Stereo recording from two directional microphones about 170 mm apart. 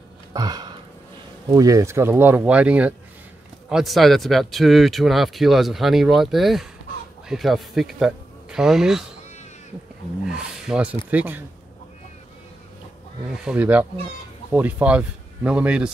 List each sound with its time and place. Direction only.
0.3 s a sound: 25° right (ahead or behind)
1.5 s speech: 20° right (ahead or behind); by 9.0 s 5° right (ahead or behind)
10.2 s speech: 5° right (ahead or behind)
13.4 s speech: 5° right (ahead or behind)